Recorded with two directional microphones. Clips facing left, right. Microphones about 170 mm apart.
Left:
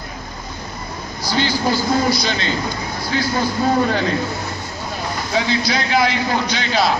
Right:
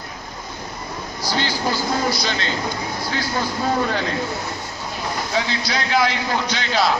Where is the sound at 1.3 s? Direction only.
20° left (ahead or behind).